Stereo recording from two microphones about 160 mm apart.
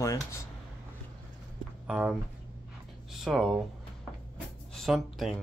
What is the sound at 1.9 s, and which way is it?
Speech, 10° right (ahead or behind).